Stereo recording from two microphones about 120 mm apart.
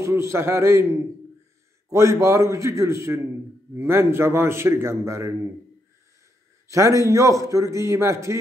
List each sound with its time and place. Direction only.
0.0 s a man's voice: 25° right (ahead or behind)
1.9 s a man's voice: 25° right (ahead or behind)
6.7 s a man's voice: 25° right (ahead or behind)